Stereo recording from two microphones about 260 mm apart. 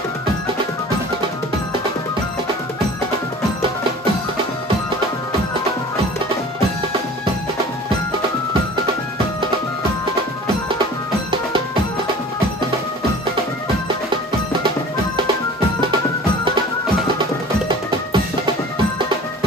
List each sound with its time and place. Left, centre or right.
17.6 s music: centre